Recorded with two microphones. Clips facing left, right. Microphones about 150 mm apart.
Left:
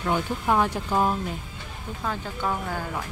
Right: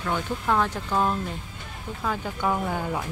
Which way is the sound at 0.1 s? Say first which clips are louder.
Left 1 dB; 10° left (ahead or behind).